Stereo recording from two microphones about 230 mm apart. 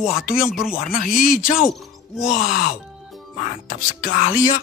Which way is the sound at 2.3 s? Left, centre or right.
Left.